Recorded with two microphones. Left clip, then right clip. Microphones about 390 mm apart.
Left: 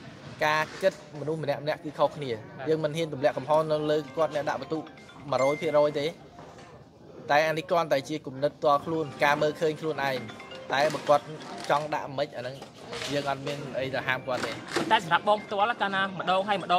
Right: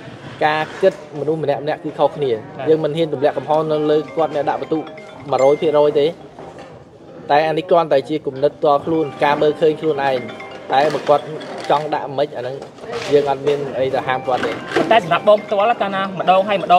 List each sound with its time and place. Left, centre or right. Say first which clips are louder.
0.4 s a man's voice: right 9 dB; left
7.2 s a man's voice: right 10 dB; left
14.7 s speech: right 10 dB; centre